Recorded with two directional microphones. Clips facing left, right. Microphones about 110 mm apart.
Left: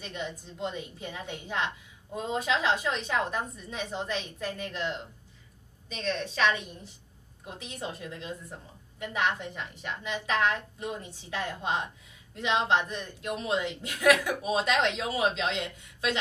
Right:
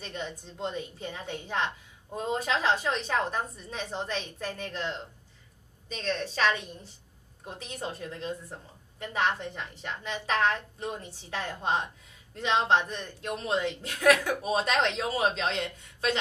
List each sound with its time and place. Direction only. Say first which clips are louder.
0.0 s a woman's voice: even; 35° right (ahead or behind)